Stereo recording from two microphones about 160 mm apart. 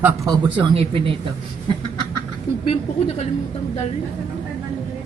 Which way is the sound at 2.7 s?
40° left (ahead or behind).